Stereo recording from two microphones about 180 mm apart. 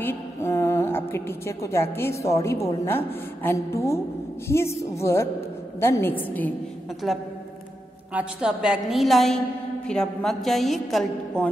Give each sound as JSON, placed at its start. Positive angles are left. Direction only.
{"t": 0.0, "sound": "a woman's voice", "side_deg": 15}